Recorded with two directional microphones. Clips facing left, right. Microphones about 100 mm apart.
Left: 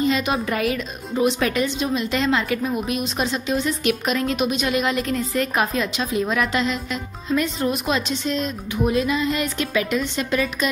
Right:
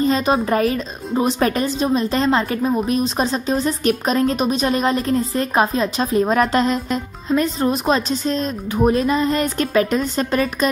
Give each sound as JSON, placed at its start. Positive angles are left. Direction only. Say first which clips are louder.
{"t": 0.0, "sound": "speech", "louder": "right 4 dB", "side_deg": -35}